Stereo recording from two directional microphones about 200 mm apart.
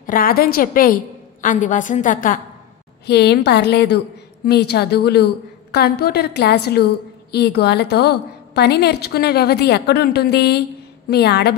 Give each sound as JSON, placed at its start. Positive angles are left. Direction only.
{"t": 0.0, "sound": "a woman's voice", "side_deg": 45}
{"t": 3.1, "sound": "a woman's voice", "side_deg": 55}